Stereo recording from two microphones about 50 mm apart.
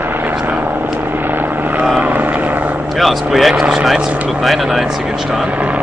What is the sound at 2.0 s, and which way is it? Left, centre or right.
Vehicle, right.